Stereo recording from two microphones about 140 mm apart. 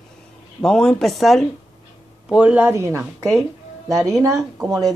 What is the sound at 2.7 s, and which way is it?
Speech, 20° right (ahead or behind).